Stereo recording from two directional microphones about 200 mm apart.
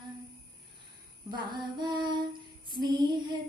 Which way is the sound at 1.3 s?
20° right (ahead or behind).